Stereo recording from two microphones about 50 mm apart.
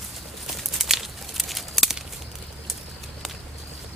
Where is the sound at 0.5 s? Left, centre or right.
Centre.